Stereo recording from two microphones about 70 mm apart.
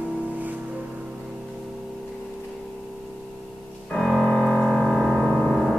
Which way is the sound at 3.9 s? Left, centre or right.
Centre.